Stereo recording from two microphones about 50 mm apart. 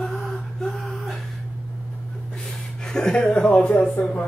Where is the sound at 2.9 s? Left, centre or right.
Centre.